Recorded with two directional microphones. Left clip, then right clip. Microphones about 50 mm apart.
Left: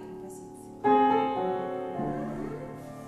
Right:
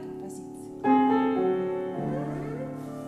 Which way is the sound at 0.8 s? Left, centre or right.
Centre.